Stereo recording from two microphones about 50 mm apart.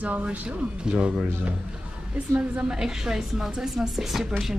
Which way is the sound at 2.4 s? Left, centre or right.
Right.